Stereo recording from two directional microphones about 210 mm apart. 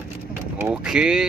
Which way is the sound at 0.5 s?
5° right (ahead or behind).